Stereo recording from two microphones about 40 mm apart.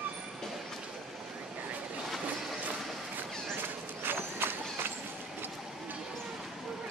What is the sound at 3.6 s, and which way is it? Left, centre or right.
Run, right.